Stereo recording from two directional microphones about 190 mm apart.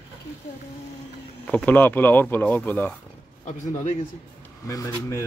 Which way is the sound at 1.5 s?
10° left (ahead or behind).